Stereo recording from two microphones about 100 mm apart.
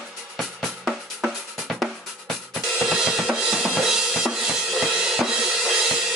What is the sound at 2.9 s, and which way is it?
Drum kit, 5° right (ahead or behind).